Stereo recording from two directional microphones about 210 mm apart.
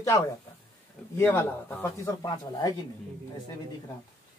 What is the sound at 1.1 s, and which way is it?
Speech, 10° left (ahead or behind).